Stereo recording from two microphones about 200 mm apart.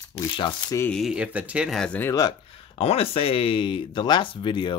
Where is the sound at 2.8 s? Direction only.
30° left (ahead or behind).